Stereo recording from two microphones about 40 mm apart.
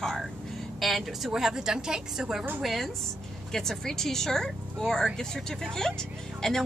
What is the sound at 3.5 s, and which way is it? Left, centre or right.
A woman's voice, centre.